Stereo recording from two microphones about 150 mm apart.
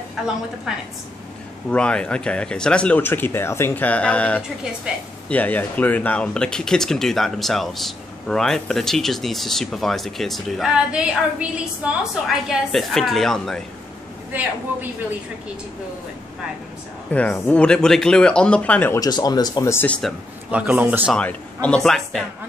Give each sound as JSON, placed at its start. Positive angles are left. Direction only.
{"t": 0.7, "sound": "speech", "side_deg": -5}
{"t": 1.7, "sound": "speech", "side_deg": 5}
{"t": 4.9, "sound": "a woman's voice", "side_deg": -5}
{"t": 5.3, "sound": "speech", "side_deg": 10}
{"t": 14.3, "sound": "a woman's voice", "side_deg": -10}
{"t": 17.1, "sound": "speech", "side_deg": 10}
{"t": 18.9, "sound": "speech", "side_deg": 25}
{"t": 20.5, "sound": "a woman's voice", "side_deg": -10}
{"t": 21.1, "sound": "speech", "side_deg": 10}